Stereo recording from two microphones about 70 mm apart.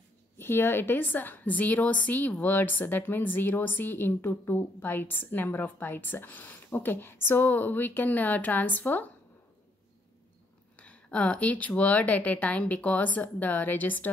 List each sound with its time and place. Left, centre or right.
0.4 s a woman's voice: left
10.8 s a woman's voice: centre